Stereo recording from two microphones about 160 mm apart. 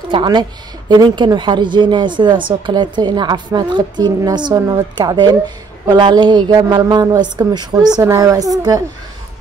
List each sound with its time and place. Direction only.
0.1 s a woman's voice: 30° right (ahead or behind)